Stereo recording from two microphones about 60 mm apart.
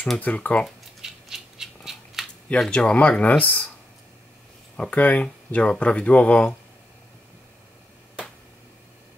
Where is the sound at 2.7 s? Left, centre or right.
Centre.